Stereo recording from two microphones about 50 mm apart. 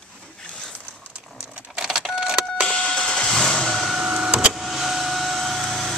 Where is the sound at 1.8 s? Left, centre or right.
Centre.